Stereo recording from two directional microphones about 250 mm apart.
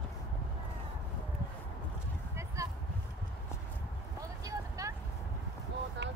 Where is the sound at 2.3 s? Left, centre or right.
Centre.